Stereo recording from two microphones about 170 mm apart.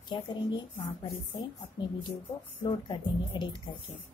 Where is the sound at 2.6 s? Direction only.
30° left (ahead or behind).